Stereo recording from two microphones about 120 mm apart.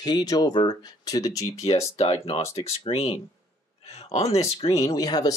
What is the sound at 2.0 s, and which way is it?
Speech, 55° left (ahead or behind).